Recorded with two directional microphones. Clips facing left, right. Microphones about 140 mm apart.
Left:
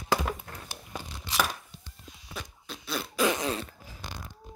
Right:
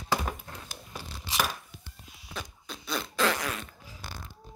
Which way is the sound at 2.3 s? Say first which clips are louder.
Right 1 dB; centre (ahead or behind).